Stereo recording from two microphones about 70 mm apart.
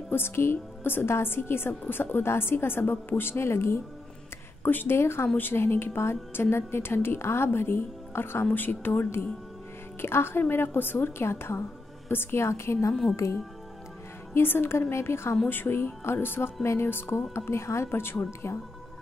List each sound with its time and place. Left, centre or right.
0.1 s a woman's voice: left
14.3 s a woman's voice: left